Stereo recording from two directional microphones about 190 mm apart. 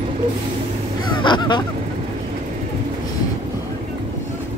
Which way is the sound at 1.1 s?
25° left (ahead or behind).